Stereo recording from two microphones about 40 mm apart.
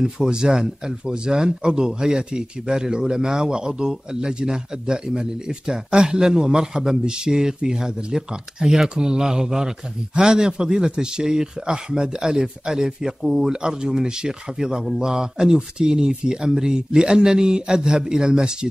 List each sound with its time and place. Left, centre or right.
0.0 s speech: centre